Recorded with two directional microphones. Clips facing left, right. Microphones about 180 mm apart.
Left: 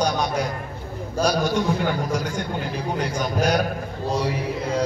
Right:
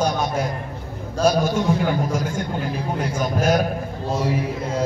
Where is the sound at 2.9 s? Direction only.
5° right (ahead or behind).